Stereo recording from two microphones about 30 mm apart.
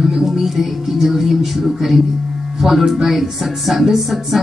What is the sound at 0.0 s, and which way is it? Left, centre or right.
A woman's voice, centre.